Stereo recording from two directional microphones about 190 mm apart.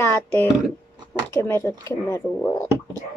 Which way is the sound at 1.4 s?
15° left (ahead or behind).